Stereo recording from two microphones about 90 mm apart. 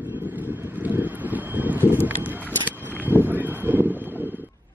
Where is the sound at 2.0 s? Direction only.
20° right (ahead or behind).